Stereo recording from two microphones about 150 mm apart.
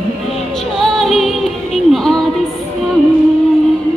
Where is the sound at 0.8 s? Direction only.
Centre (ahead or behind).